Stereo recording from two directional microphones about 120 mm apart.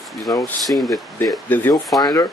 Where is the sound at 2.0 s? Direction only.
35° left (ahead or behind).